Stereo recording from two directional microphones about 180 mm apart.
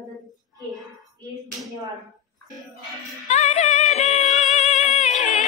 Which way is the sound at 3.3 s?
40° left (ahead or behind).